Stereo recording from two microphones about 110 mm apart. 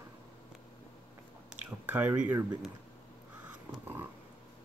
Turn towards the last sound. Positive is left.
turn(degrees=-10)  # may be behind; listen again after turning